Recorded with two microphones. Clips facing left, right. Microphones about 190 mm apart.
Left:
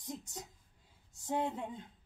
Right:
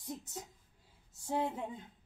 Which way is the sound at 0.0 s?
5° right (ahead or behind).